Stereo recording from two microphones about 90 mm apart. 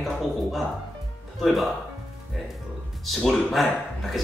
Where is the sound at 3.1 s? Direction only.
Centre (ahead or behind).